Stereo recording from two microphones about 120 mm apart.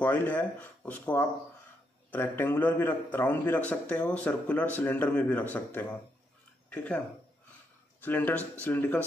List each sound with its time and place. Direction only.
0.0 s a man's voice: 15° left (ahead or behind)
8.0 s a man's voice: 15° left (ahead or behind)